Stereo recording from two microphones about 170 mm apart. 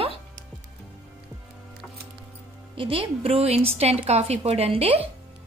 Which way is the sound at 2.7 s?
30° right (ahead or behind).